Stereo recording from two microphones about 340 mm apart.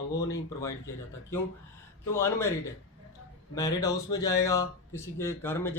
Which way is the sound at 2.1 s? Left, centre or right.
Centre.